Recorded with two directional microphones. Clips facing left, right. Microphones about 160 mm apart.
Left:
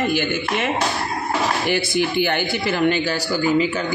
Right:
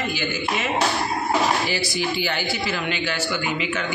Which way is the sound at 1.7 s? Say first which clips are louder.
Left 5 dB; 55° left (ahead or behind).